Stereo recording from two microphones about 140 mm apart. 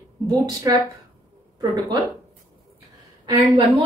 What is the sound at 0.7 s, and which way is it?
Speech, 25° right (ahead or behind).